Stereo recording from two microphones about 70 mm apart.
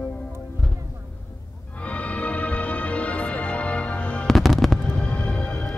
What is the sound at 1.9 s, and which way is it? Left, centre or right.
Music, centre.